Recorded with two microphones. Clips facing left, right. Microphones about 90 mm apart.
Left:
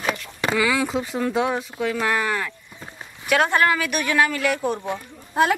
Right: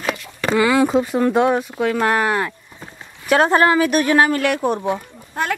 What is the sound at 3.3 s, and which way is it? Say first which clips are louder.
Speech: right 5 dB; 35° right (ahead or behind).